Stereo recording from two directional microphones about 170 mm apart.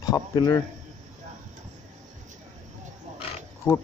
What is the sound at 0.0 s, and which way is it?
Speech, 25° left (ahead or behind).